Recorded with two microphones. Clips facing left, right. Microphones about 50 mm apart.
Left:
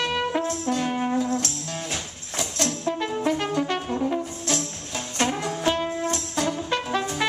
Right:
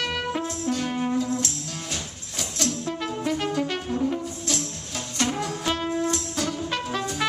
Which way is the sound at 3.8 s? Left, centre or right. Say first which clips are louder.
Even; left.